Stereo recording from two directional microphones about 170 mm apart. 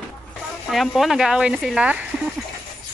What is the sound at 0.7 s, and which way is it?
Speech, centre (ahead or behind).